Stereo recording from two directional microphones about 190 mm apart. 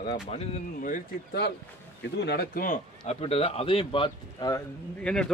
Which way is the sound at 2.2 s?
55° left (ahead or behind).